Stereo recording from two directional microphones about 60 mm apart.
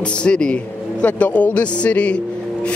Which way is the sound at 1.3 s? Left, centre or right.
Left.